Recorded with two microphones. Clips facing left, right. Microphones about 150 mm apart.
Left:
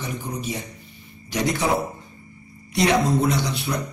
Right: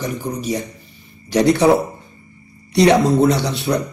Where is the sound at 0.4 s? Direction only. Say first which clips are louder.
Right 7 dB; 40° right (ahead or behind).